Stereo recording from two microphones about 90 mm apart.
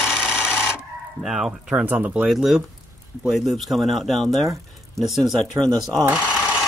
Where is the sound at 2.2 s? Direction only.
5° right (ahead or behind).